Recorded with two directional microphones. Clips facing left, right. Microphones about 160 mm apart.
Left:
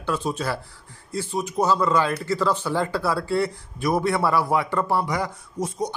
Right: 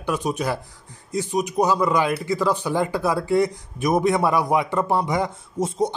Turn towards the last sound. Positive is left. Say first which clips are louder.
# right 4 dB
turn(degrees=-25)  # may be behind; listen again after turning